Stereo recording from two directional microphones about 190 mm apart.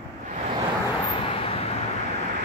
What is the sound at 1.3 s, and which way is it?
Vehicle, 30° left (ahead or behind).